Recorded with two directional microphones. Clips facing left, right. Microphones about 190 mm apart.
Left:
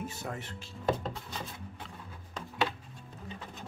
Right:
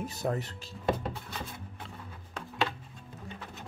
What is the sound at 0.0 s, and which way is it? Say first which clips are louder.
Speech: right 6 dB; 35° right (ahead or behind).